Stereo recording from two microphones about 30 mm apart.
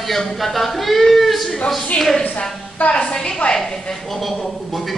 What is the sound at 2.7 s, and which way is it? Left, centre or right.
Speech, left.